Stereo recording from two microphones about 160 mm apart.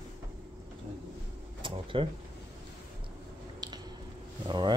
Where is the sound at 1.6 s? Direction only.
30° right (ahead or behind).